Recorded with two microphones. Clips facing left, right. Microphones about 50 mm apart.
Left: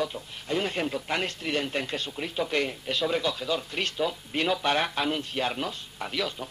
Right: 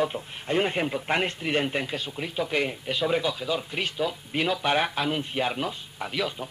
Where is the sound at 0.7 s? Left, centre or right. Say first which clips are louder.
Right 3 dB; centre.